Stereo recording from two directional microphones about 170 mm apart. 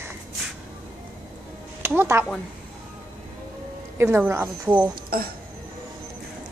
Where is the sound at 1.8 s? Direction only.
15° right (ahead or behind).